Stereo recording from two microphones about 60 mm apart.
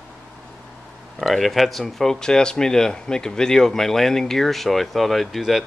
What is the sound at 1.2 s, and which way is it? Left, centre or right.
Speech, centre.